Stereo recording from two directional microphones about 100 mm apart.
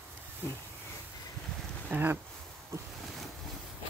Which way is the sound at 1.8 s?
20° right (ahead or behind).